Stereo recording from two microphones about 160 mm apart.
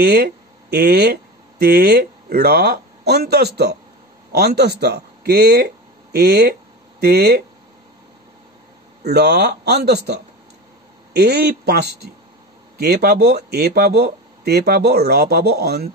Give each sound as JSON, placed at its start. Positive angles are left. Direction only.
{"t": 0.0, "sound": "speech", "side_deg": -85}
{"t": 9.0, "sound": "speech", "side_deg": -90}
{"t": 11.1, "sound": "speech", "side_deg": -85}